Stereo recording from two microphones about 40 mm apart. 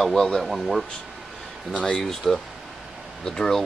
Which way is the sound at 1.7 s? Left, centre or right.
Left.